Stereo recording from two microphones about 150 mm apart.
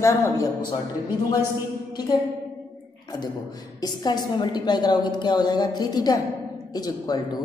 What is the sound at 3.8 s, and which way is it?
A woman's voice, 25° left (ahead or behind).